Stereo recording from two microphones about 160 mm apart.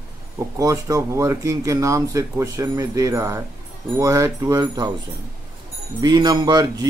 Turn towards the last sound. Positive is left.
turn(degrees=-25)  # may be behind; listen again after turning